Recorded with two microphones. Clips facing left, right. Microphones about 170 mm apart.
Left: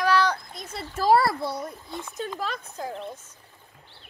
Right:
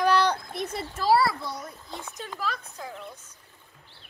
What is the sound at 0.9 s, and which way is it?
Speech, 50° left (ahead or behind).